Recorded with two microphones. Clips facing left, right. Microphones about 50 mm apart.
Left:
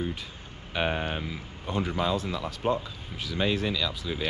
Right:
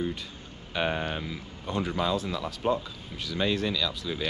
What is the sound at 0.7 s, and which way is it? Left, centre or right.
Speech, centre.